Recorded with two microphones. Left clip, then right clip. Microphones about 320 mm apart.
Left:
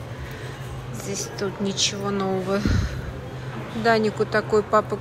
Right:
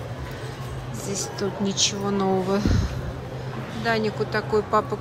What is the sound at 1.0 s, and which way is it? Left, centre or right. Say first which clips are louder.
Speech: even; centre.